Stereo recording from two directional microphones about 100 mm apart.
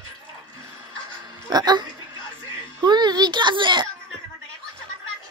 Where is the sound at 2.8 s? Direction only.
45° right (ahead or behind).